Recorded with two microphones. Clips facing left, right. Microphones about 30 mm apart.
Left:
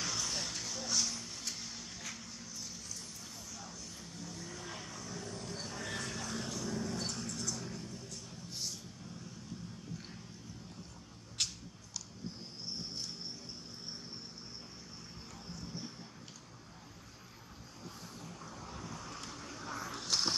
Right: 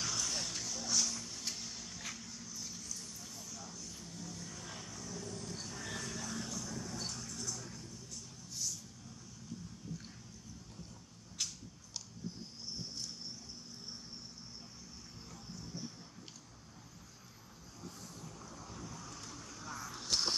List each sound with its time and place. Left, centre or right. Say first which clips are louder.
0.0 s a sound: left 1 dB; centre
2.1 s vehicle: left 1 dB; centre
5.9 s vehicle: left 1 dB; left
11.4 s biting: left 4 dB; left
18.4 s vehicle: left 3 dB; left
19.2 s a sound: left 3 dB; left